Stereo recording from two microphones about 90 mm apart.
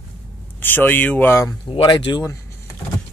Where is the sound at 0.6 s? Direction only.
20° left (ahead or behind).